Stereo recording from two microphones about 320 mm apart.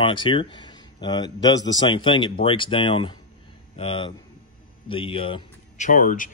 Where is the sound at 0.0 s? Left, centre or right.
Centre.